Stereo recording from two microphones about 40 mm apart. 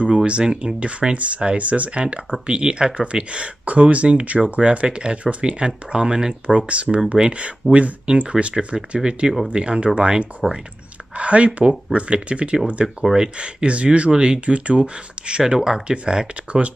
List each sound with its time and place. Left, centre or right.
0.0 s speech: right
6.4 s speech: right
10.4 s speech: centre
11.1 s speech: right